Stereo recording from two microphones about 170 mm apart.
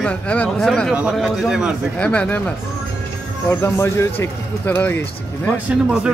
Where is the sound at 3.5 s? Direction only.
15° left (ahead or behind).